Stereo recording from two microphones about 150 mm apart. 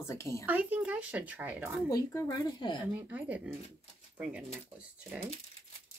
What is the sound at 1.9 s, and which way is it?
Speech, 25° left (ahead or behind).